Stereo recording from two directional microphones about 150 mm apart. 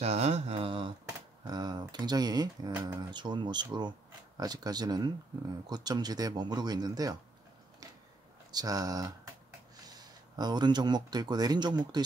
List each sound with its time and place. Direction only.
0.0 s a sound: 45° right (ahead or behind); by 2.7 s 25° right (ahead or behind)
2.9 s speech: 30° right (ahead or behind)
8.5 s speech: 25° right (ahead or behind)